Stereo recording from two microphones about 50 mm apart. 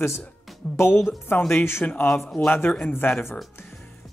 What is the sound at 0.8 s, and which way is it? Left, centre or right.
Speech, left.